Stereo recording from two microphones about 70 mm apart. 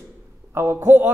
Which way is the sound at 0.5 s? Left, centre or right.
Right.